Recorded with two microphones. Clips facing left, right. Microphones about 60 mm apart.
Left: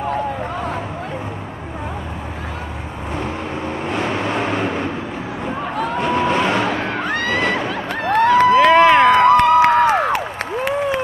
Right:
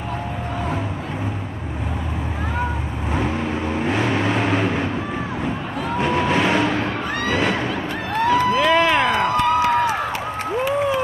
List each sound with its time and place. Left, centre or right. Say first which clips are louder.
4.2 s vehicle: even; centre
6.1 s vehicle: left 1 dB; centre
7.1 s a sound: left 3 dB; left
8.1 s crowd: left 6 dB; left
8.6 s crowd: left 5 dB; left
9.1 s applause: left 7 dB; left